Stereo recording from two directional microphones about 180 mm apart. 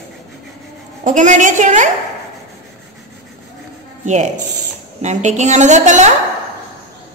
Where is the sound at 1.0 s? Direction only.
45° right (ahead or behind).